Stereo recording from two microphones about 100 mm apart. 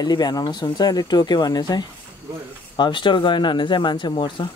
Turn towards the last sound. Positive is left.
turn(degrees=55)  # may be behind; listen again after turning